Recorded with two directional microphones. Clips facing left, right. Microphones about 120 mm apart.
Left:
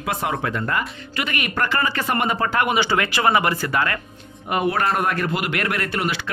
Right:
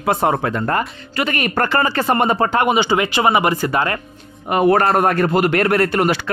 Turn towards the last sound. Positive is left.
turn(degrees=-45)  # may be behind; listen again after turning